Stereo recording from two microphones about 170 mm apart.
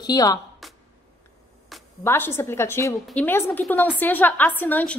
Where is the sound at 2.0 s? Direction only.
15° left (ahead or behind).